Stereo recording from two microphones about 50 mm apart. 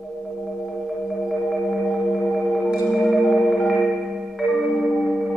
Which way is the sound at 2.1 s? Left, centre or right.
Centre.